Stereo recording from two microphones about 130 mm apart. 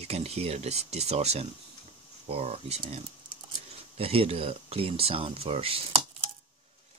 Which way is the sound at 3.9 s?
50° right (ahead or behind).